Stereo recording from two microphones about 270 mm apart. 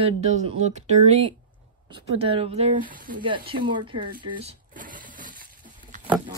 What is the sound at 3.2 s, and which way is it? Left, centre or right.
Speech, centre.